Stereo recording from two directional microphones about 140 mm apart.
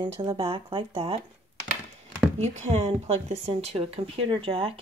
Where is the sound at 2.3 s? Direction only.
50° right (ahead or behind).